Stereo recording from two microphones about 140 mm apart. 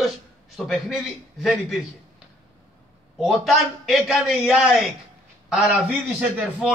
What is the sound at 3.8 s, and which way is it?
A man's voice, centre (ahead or behind).